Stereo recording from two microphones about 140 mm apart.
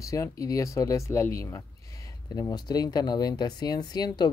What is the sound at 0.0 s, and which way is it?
Speech, 20° left (ahead or behind).